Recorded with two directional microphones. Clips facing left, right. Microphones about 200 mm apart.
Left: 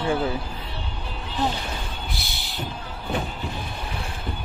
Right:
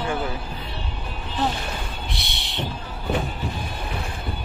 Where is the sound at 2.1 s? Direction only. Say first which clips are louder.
Right 1 dB; centre (ahead or behind).